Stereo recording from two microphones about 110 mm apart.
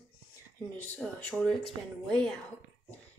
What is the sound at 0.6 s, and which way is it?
Speech, 15° left (ahead or behind).